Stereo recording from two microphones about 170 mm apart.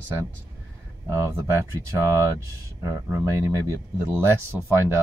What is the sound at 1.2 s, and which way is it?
Speech, 15° right (ahead or behind).